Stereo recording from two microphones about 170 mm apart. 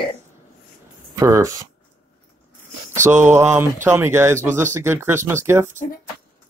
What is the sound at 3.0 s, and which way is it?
Speech, 15° right (ahead or behind).